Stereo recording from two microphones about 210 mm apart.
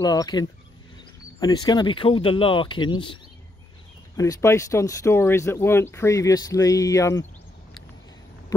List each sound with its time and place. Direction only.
0.0 s speech: 20° left (ahead or behind)
4.2 s speech: 15° left (ahead or behind)